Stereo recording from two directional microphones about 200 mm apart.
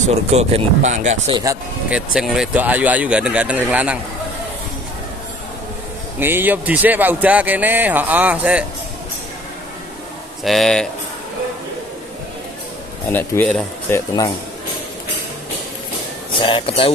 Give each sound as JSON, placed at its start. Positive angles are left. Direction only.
{"t": 0.0, "sound": "speech", "side_deg": -30}
{"t": 1.3, "sound": "speech", "side_deg": -15}
{"t": 1.9, "sound": "speech", "side_deg": -5}
{"t": 6.1, "sound": "speech", "side_deg": -10}
{"t": 10.4, "sound": "speech", "side_deg": 0}
{"t": 13.1, "sound": "speech", "side_deg": 10}
{"t": 16.3, "sound": "speech", "side_deg": 25}